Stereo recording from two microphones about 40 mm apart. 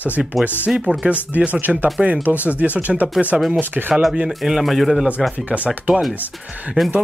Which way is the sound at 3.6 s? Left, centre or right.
Right.